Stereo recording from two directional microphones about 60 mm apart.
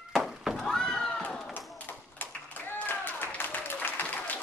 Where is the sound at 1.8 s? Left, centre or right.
Left.